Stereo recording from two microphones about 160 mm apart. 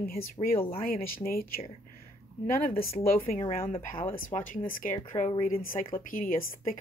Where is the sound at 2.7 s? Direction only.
65° left (ahead or behind).